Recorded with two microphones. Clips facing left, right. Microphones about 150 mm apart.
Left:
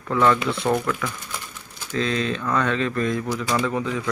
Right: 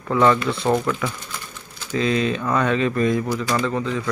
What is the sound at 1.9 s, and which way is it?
Speech, 5° right (ahead or behind).